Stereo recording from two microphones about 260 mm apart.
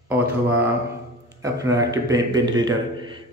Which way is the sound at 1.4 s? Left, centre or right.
Centre.